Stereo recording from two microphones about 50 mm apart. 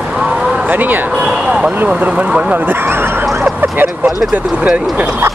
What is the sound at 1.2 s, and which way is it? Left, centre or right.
Speech, centre.